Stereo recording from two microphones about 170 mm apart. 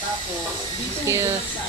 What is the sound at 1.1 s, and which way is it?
Speech, 15° right (ahead or behind).